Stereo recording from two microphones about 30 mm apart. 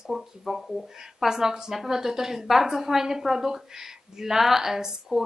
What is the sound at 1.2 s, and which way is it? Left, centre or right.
A woman's voice, centre.